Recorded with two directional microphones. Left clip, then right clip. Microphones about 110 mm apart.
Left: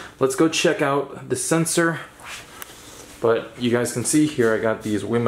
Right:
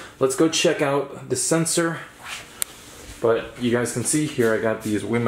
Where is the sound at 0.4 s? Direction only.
5° left (ahead or behind).